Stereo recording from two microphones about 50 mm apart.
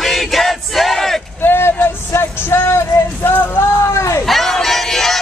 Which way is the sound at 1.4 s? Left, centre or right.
Left.